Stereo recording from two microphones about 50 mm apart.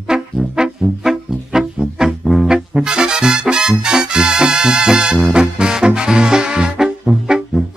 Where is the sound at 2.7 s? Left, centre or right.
Centre.